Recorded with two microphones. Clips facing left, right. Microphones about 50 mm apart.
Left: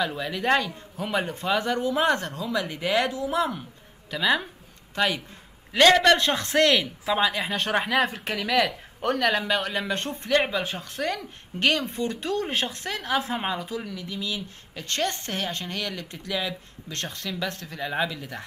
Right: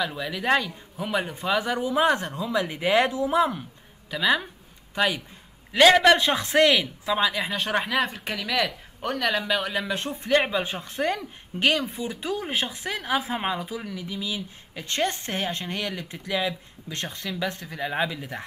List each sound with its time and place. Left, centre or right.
0.0 s speech: centre
1.6 s speech: centre
4.1 s speech: centre
7.1 s speech: centre